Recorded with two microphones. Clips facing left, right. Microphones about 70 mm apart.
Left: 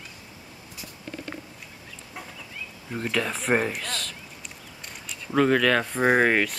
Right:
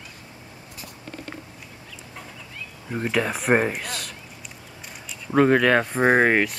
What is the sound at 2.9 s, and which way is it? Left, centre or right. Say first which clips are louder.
Speech: right 3 dB; centre.